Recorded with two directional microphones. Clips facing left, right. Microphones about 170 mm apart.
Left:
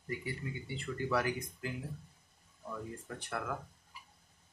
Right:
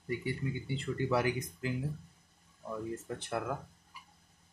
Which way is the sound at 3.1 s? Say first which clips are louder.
Right 2 dB; 20° right (ahead or behind).